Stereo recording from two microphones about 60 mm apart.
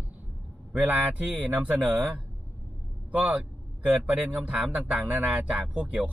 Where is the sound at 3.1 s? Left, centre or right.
Right.